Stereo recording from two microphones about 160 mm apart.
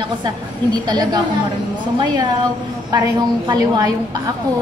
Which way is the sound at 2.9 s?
25° right (ahead or behind).